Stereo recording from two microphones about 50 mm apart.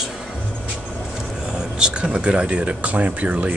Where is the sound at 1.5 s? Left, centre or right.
Centre.